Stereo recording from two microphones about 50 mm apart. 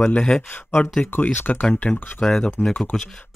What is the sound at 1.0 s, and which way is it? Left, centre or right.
Speech, left.